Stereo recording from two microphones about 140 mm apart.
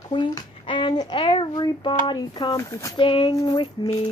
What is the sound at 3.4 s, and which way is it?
Speech, 25° left (ahead or behind).